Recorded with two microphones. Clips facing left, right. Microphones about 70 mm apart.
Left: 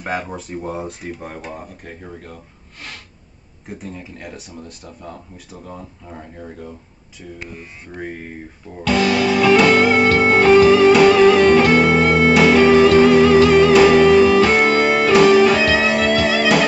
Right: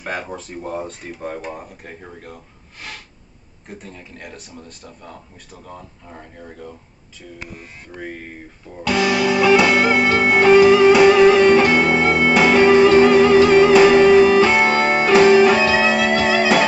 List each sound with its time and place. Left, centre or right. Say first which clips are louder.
0.0 s speech: left 2 dB; centre
3.6 s speech: left 4 dB; centre
8.8 s music: left 1 dB; centre
14.8 s music: left 1 dB; centre
15.0 s music: right 1 dB; right